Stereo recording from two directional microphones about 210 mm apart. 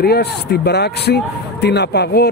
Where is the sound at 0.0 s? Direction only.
50° left (ahead or behind).